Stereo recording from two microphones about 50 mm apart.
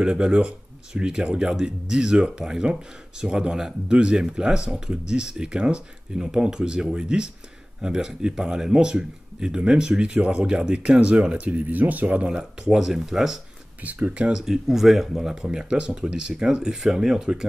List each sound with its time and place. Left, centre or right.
0.0 s speech: centre
10.4 s speech: centre; by 12.3 s right
12.3 s speech: centre
13.7 s speech: right
14.3 s speech: centre